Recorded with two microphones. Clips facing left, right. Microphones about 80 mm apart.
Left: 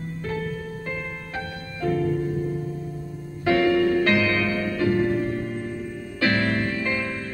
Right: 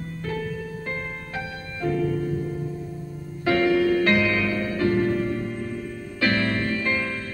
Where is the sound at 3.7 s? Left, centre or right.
Centre.